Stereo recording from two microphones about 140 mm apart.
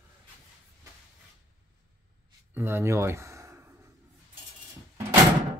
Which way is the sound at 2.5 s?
15° right (ahead or behind).